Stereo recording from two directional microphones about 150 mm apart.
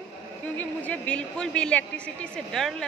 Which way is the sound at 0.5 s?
10° left (ahead or behind).